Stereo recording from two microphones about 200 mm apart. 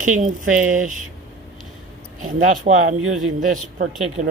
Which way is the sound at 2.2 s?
40° right (ahead or behind).